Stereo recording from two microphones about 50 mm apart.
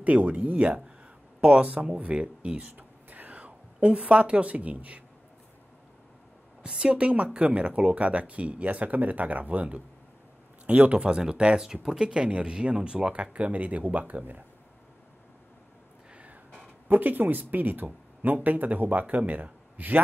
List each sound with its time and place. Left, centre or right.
0.0 s speech: right
6.6 s speech: centre; by 14.4 s right
16.8 s speech: right